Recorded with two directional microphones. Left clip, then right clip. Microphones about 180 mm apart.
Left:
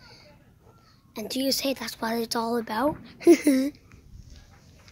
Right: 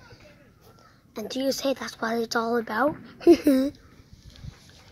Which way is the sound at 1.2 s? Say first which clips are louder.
Right 1 dB; 15° left (ahead or behind).